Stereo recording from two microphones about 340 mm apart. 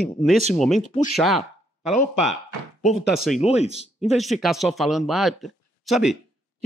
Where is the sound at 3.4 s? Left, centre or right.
Centre.